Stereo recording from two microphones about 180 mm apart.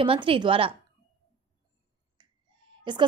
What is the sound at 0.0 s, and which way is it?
Speech, 30° right (ahead or behind).